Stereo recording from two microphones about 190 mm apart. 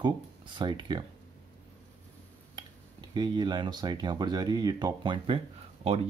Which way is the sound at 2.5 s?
25° right (ahead or behind).